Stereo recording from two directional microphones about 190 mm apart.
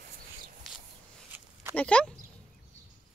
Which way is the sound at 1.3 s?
10° right (ahead or behind).